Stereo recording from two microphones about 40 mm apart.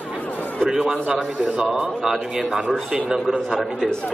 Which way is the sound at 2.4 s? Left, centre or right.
Centre.